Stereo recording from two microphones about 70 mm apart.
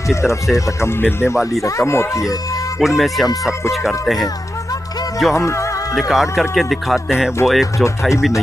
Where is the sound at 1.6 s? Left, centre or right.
Left.